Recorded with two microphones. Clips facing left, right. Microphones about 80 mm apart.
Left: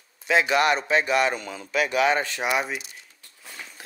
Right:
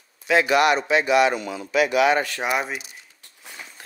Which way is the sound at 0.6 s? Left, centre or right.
Left.